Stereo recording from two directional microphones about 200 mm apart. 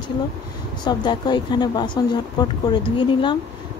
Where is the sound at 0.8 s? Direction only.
20° left (ahead or behind).